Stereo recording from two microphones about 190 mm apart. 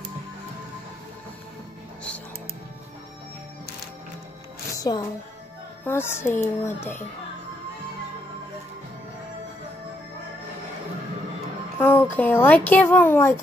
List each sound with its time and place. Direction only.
4.7 s music: 20° left (ahead or behind)
5.9 s a woman's voice: 10° left (ahead or behind)
11.8 s a woman's voice: 10° left (ahead or behind)